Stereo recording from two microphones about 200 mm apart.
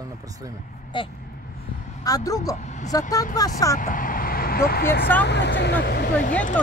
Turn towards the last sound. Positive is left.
turn(degrees=55)  # may be behind; listen again after turning